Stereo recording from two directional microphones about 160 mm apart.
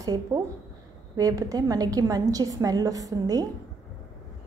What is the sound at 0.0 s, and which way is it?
A woman's voice, 20° right (ahead or behind).